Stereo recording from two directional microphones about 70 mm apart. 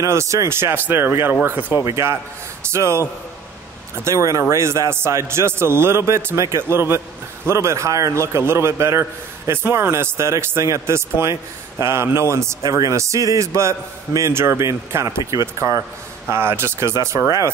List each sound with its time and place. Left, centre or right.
0.0 s a man's voice: right
1.9 s a man's voice: right
4.0 s a man's voice: right